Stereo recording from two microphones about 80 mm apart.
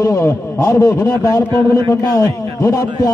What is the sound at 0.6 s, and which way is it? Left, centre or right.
A man's voice, left.